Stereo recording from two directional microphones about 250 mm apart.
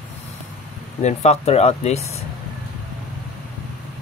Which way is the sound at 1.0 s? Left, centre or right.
Left.